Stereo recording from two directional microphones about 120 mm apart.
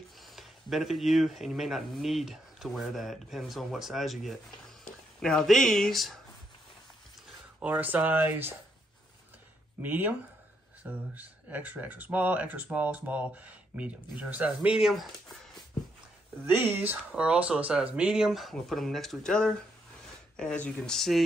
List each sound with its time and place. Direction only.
0.2 s speech: centre (ahead or behind)
7.6 s speech: 15° right (ahead or behind)
9.8 s speech: 15° right (ahead or behind)
16.4 s speech: 20° right (ahead or behind); by 21.2 s 5° left (ahead or behind)